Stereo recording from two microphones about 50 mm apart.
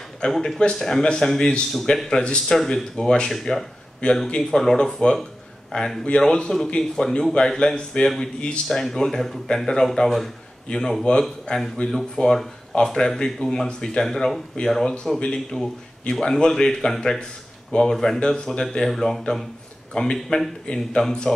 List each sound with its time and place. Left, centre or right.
0.3 s speech: centre
4.0 s a man's voice: left
4.4 s a man's voice: centre